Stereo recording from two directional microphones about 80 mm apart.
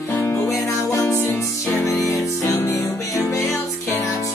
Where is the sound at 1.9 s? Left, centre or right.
Left.